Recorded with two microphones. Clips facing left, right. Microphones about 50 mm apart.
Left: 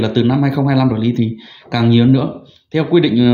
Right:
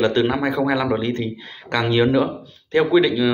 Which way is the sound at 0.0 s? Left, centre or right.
Right.